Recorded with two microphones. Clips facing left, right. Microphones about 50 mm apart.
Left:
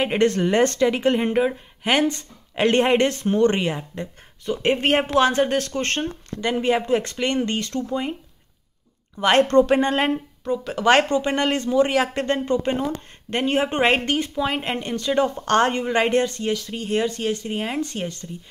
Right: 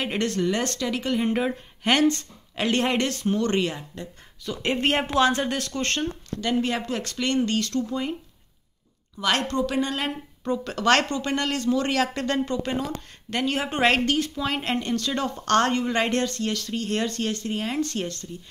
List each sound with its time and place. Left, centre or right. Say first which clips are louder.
0.0 s speech: left 6 dB; left
1.3 s speech: left 4 dB; centre
2.0 s speech: right 3 dB; left
6.4 s speech: left 4 dB; left
9.2 s speech: left 8 dB; left
10.4 s speech: left 2 dB; centre
12.1 s speech: left 4 dB; left; by 18.3 s centre